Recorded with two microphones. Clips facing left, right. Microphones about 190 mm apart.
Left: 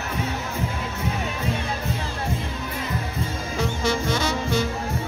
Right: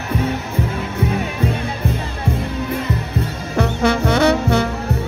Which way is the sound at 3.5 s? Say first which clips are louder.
Right 8 dB; 65° right (ahead or behind).